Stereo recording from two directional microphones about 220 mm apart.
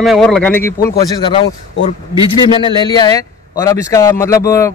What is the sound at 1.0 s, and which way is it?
A man's voice, 20° left (ahead or behind).